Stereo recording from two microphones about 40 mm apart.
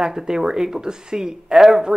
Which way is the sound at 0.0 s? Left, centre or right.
Centre.